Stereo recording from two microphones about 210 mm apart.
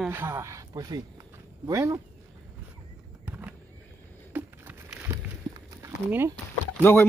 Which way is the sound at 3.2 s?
10° right (ahead or behind).